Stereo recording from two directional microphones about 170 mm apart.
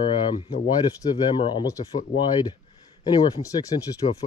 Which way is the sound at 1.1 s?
25° left (ahead or behind).